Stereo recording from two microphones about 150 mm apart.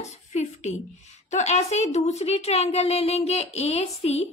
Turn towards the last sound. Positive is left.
turn(degrees=45)  # may be behind; listen again after turning